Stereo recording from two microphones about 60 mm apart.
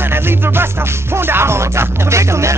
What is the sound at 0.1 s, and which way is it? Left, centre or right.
Music, right.